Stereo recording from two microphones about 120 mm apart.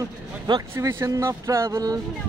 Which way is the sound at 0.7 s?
25° right (ahead or behind).